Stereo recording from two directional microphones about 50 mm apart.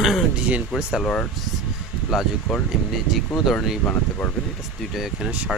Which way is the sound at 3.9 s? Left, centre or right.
Left.